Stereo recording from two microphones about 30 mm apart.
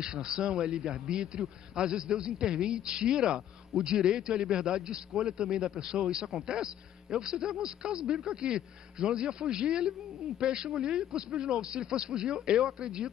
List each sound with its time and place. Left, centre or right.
0.0 s a man's voice: right